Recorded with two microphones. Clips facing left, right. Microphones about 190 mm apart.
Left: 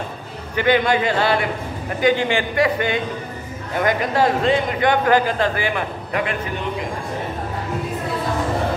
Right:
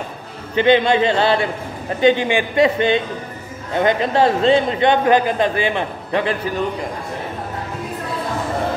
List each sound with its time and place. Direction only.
0.6 s a man's voice: 25° right (ahead or behind)